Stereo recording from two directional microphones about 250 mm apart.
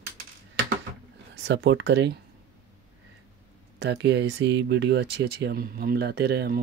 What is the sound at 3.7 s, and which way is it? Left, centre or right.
Speech, right.